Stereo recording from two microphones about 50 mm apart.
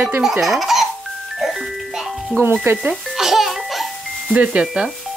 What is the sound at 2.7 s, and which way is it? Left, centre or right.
Speech, right.